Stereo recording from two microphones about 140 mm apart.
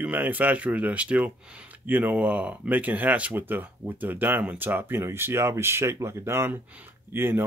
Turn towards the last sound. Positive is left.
turn(degrees=-15)  # may be behind; listen again after turning